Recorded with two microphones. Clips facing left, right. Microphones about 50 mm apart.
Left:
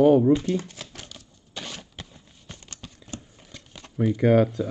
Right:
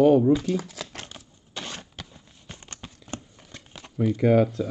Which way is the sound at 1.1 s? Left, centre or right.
Right.